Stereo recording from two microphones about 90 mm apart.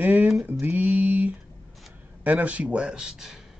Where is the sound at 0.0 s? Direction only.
20° right (ahead or behind).